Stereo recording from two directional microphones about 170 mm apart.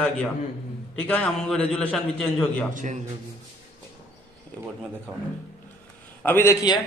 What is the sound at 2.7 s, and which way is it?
Speech, 50° right (ahead or behind).